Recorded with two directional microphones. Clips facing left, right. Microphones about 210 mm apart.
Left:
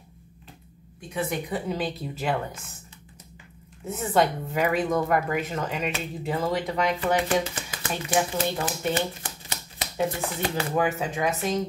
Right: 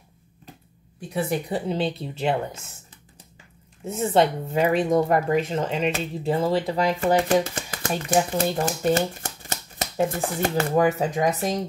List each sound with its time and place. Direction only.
1.1 s speech: 30° right (ahead or behind)
3.8 s speech: 25° right (ahead or behind)
7.0 s speech: 40° right (ahead or behind)